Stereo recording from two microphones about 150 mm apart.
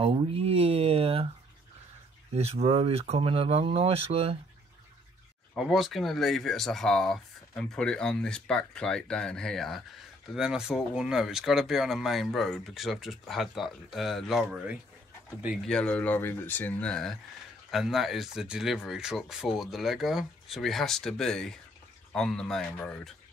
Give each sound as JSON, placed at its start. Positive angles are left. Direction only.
{"t": 0.0, "sound": "speech", "side_deg": -40}
{"t": 2.3, "sound": "speech", "side_deg": -45}
{"t": 5.5, "sound": "speech", "side_deg": 0}
{"t": 15.6, "sound": "speech", "side_deg": 5}